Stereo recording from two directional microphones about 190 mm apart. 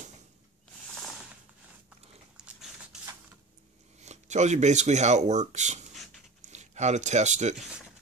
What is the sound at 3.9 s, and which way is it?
Speech, 35° right (ahead or behind).